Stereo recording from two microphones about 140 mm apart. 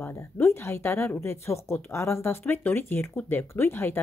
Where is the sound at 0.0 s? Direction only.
15° left (ahead or behind).